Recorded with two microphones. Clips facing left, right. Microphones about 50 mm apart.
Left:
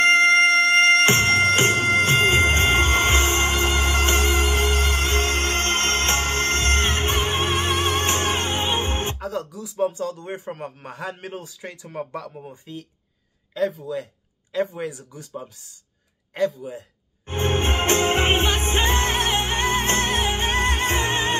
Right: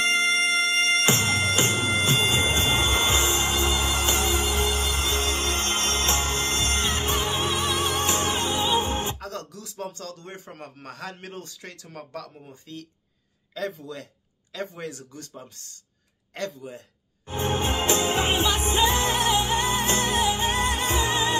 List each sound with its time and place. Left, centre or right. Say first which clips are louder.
0.0 s music: left 7 dB; left
9.2 s a man's voice: left 6 dB; centre
13.6 s a man's voice: left 7 dB; centre
17.3 s music: left 3 dB; left